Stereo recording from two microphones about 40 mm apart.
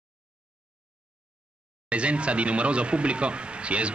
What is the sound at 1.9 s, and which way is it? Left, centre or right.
A man's voice, right.